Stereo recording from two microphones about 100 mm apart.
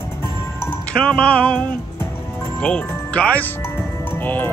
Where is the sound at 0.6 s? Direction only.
20° left (ahead or behind).